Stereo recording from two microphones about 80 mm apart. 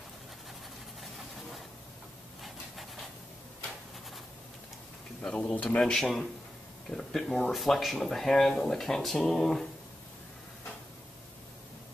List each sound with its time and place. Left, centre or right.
2.4 s rub: centre
5.2 s speech: centre
5.8 s speech: centre